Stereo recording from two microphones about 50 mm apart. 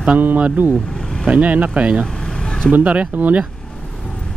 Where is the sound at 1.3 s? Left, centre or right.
Right.